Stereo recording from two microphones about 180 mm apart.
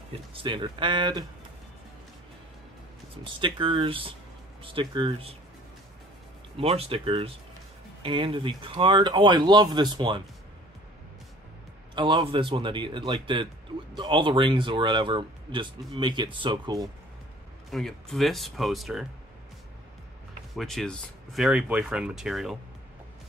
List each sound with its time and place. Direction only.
0.3 s speech: 30° right (ahead or behind)
3.3 s speech: 25° right (ahead or behind)
6.5 s speech: 35° right (ahead or behind)
11.9 s speech: 25° right (ahead or behind)
17.6 s speech: centre (ahead or behind)
20.5 s speech: centre (ahead or behind)